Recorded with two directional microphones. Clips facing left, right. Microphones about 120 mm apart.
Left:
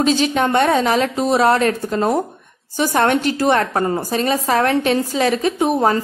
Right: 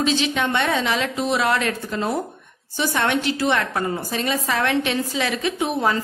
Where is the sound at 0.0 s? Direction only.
45° left (ahead or behind).